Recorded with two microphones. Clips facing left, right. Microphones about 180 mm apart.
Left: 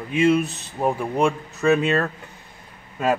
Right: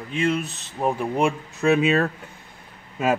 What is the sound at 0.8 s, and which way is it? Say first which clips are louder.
Speech: left 1 dB; 5° right (ahead or behind).